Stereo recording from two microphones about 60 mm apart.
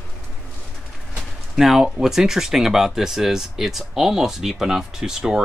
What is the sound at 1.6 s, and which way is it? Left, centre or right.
Speech, centre.